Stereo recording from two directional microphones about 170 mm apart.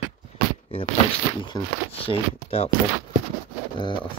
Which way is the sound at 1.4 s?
30° left (ahead or behind).